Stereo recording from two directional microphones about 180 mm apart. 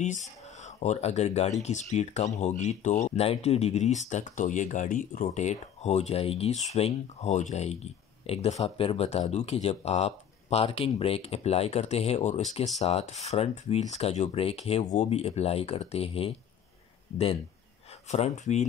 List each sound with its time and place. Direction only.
0.0 s speech: 40° left (ahead or behind)
18.0 s speech: 40° left (ahead or behind)